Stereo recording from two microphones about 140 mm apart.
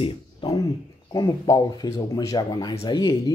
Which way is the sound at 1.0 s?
25° left (ahead or behind).